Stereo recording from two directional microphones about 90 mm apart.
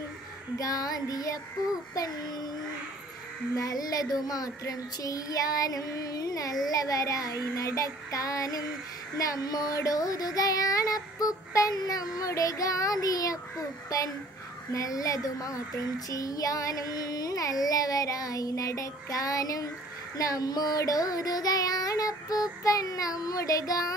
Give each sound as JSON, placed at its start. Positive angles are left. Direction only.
{"t": 0.6, "sound": "child singing", "side_deg": 40}
{"t": 3.5, "sound": "child singing", "side_deg": 40}
{"t": 6.7, "sound": "speech", "side_deg": 45}
{"t": 20.2, "sound": "child singing", "side_deg": 40}